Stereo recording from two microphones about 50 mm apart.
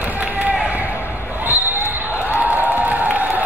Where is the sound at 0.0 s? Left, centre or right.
Right.